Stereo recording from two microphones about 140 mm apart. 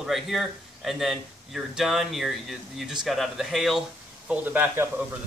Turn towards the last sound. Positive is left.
turn(degrees=-15)  # may be behind; listen again after turning